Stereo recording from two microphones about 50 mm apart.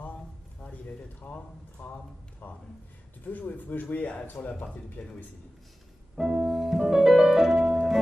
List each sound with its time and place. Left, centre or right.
0.0 s a sound: left
2.4 s a man's voice: left
6.1 s music: centre